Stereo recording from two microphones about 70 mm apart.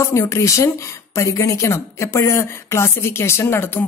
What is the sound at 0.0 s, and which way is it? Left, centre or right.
Speech, left.